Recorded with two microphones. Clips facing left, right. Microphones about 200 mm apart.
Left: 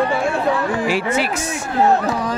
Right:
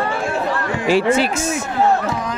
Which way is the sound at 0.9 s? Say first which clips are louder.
Right 4 dB; 30° right (ahead or behind).